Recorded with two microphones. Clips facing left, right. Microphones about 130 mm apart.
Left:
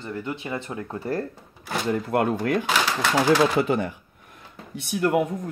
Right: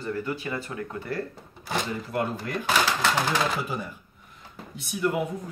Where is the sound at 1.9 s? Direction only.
60° left (ahead or behind).